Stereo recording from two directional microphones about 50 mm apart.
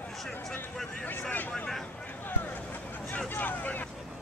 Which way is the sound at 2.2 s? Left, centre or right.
Left.